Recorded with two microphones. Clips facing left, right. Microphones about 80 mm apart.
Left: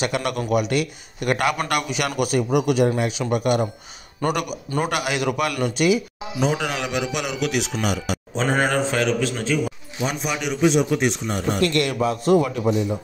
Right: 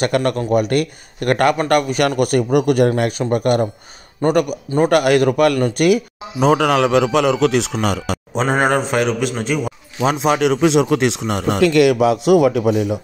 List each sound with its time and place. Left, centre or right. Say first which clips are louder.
0.0 s a man's voice: right 6 dB; right
8.5 s a man's voice: right 5 dB; right
8.9 s a man's voice: right 4 dB; right